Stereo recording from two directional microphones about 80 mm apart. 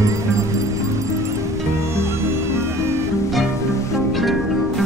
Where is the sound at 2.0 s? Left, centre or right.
Right.